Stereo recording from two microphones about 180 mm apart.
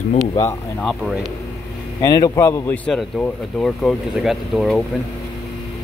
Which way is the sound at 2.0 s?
20° left (ahead or behind).